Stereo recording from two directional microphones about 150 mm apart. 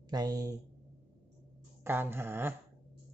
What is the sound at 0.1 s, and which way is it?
Speech, 25° right (ahead or behind).